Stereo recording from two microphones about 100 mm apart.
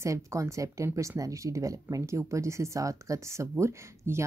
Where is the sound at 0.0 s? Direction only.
30° right (ahead or behind).